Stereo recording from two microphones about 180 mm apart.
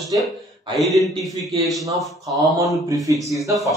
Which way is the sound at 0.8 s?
Centre (ahead or behind).